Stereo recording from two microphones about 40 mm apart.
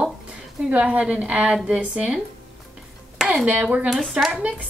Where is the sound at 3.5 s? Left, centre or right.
Right.